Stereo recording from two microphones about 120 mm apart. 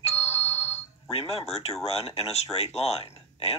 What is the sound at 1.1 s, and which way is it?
Speech, 55° left (ahead or behind).